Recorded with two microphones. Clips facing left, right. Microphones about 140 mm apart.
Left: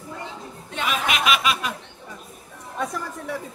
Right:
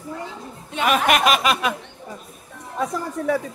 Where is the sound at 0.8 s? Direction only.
50° right (ahead or behind).